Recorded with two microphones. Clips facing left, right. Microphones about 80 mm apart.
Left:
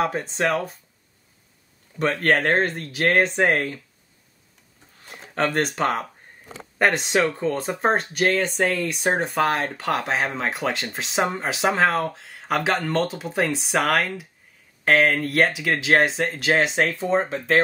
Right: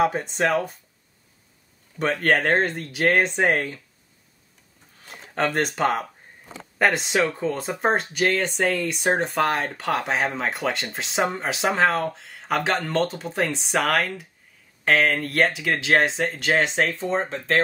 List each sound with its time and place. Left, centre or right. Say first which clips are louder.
0.0 s speech: right 1 dB; centre
2.0 s speech: left 1 dB; centre
5.0 s speech: left 1 dB; centre